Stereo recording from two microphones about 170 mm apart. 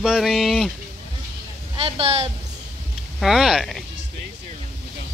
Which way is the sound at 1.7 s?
35° right (ahead or behind).